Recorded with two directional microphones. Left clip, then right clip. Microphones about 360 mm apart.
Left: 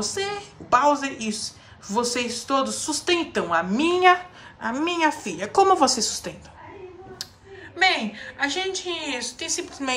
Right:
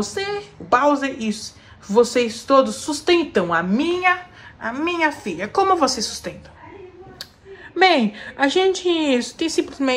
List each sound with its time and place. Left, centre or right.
0.0 s a woman's voice: centre
7.7 s a woman's voice: centre